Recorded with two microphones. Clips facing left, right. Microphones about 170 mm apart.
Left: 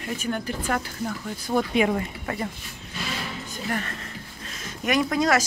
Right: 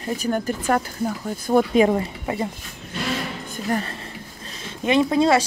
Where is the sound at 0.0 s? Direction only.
35° right (ahead or behind).